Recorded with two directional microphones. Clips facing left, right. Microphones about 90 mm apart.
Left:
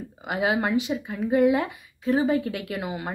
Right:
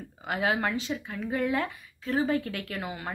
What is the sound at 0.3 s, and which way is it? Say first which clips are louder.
Speech: left 4 dB; 15° left (ahead or behind).